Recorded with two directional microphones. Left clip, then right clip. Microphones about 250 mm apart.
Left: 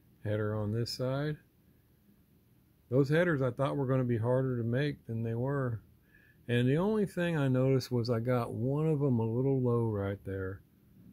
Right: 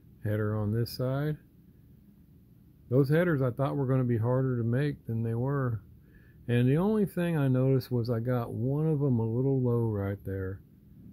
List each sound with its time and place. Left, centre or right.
0.2 s speech: centre
2.9 s speech: centre